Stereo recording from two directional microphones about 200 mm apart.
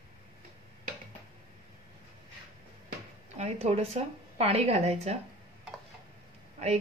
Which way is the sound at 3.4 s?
30° right (ahead or behind).